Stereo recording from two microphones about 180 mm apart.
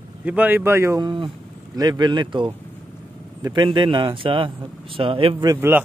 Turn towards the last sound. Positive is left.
turn(degrees=-30)  # may be behind; listen again after turning